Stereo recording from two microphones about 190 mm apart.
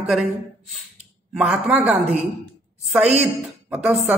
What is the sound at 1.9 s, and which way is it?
Speech, 35° right (ahead or behind).